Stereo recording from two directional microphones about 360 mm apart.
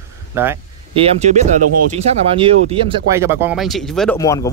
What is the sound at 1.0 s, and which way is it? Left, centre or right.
Speech, centre.